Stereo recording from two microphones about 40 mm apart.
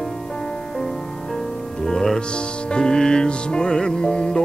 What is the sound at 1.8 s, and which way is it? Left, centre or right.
Music, centre.